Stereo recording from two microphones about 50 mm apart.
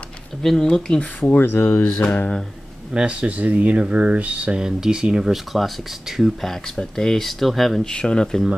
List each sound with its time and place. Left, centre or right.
0.4 s speech: centre
1.2 s speech: left
2.0 s speech: left
2.9 s speech: right
4.6 s speech: centre
5.3 s speech: centre
6.4 s speech: centre
7.8 s speech: centre